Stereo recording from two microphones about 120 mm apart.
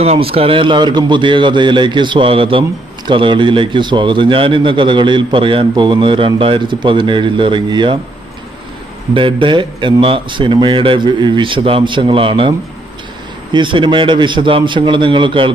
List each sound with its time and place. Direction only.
0.0 s a man's voice: 55° right (ahead or behind)
9.1 s a man's voice: 45° right (ahead or behind)